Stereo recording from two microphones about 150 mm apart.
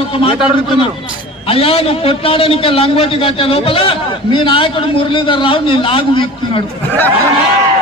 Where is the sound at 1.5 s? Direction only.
40° left (ahead or behind).